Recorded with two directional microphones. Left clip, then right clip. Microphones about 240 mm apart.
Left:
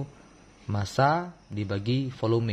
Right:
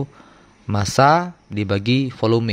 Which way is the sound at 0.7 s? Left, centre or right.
Right.